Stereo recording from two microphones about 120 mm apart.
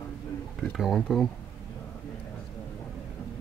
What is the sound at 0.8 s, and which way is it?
Speech, centre (ahead or behind).